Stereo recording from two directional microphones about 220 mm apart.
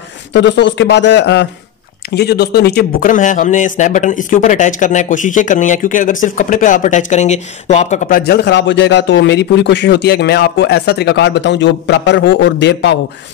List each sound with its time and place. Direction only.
0.3 s a man's voice: 55° left (ahead or behind); by 8.2 s 30° left (ahead or behind)
8.2 s a man's voice: 50° left (ahead or behind)